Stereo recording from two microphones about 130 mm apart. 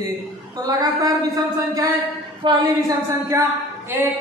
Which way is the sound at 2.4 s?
40° right (ahead or behind).